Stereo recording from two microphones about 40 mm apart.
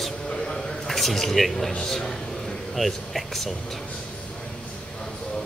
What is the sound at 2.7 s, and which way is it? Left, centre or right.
Speech, centre.